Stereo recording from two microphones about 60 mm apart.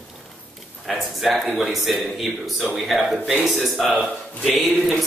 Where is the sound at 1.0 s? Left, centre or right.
Centre.